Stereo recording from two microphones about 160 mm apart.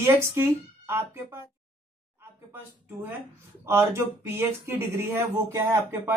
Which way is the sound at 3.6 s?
15° right (ahead or behind).